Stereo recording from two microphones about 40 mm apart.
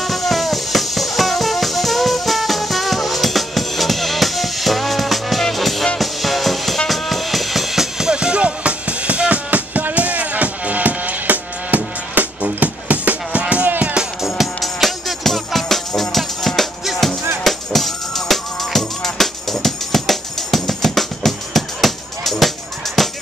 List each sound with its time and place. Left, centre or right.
0.0 s music: centre
8.1 s music: right
13.7 s music: right
14.2 s music: centre
16.8 s music: centre